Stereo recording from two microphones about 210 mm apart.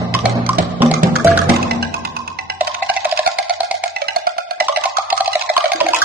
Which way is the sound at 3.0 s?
10° right (ahead or behind).